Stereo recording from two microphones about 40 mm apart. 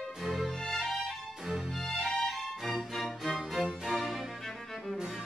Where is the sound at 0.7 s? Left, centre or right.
Centre.